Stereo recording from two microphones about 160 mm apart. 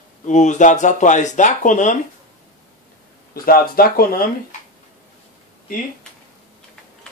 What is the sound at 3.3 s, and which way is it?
Speech, 70° left (ahead or behind).